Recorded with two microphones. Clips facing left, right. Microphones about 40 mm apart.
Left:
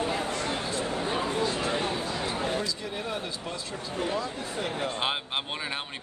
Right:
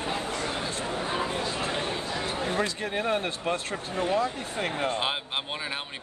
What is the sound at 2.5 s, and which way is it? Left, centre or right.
Speech, right.